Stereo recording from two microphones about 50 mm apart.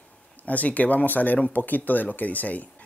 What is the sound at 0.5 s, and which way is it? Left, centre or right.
Speech, left.